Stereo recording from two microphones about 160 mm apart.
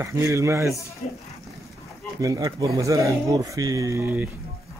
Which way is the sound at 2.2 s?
20° right (ahead or behind).